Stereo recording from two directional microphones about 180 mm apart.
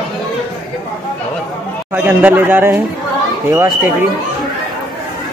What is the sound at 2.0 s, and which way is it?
Speech, 10° right (ahead or behind).